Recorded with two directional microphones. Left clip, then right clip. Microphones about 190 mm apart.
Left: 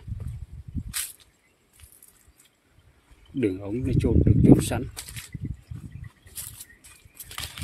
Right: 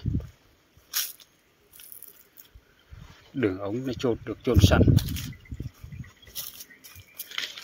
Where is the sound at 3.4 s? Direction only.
25° left (ahead or behind).